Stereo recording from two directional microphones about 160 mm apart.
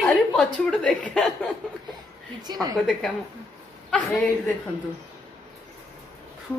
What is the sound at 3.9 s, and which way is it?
Speech, 10° left (ahead or behind).